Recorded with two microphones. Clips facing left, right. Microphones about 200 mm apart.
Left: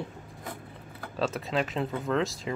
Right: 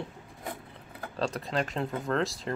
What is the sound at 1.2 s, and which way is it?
Speech, 5° left (ahead or behind).